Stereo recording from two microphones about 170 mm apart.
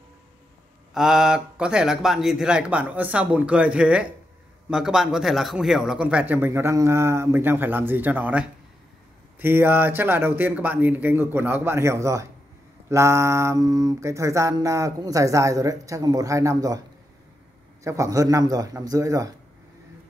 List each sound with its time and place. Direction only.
0.9 s speech: 5° right (ahead or behind)
12.8 s mantra: 15° right (ahead or behind)
17.8 s mantra: 20° right (ahead or behind)